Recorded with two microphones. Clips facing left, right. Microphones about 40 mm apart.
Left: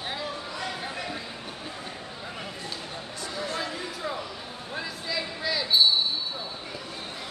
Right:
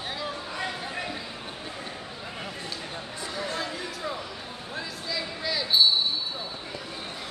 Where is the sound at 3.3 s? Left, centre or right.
Centre.